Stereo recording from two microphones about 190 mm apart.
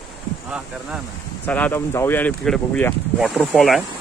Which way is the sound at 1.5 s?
10° left (ahead or behind).